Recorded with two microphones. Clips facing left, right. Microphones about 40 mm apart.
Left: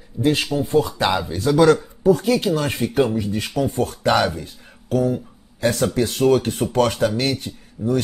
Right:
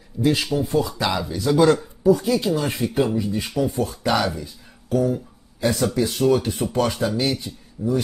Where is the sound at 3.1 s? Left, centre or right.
Left.